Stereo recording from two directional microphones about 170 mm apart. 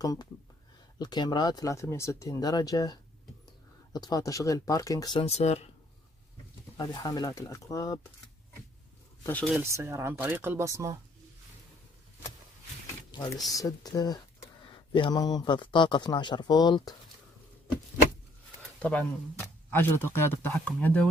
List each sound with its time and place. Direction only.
0.0 s speech: 20° left (ahead or behind)
5.2 s speech: 40° left (ahead or behind)
6.8 s speech: 20° left (ahead or behind)
9.2 s speech: 5° left (ahead or behind)
9.6 s speech: 15° right (ahead or behind)
13.5 s speech: 20° left (ahead or behind)
18.8 s speech: 10° left (ahead or behind)